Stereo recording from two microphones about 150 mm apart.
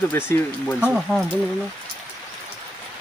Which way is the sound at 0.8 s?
5° right (ahead or behind).